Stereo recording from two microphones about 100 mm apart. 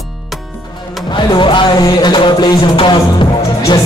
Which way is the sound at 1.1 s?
50° left (ahead or behind).